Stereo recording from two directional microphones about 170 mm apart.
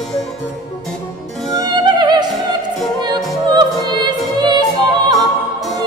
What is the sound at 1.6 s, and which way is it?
Music, 25° right (ahead or behind).